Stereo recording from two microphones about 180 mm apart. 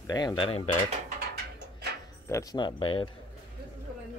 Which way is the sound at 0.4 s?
30° left (ahead or behind).